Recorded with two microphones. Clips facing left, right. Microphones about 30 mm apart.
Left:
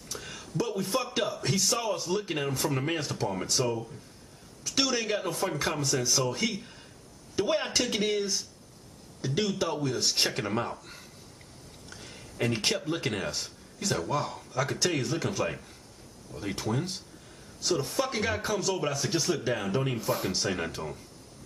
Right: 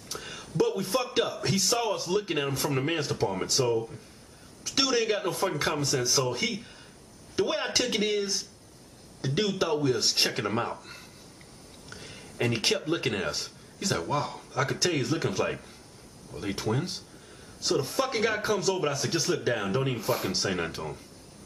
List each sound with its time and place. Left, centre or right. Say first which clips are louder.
0.1 s a man's voice: right 1 dB; centre